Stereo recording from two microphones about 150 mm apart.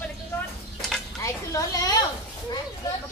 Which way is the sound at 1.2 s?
20° left (ahead or behind).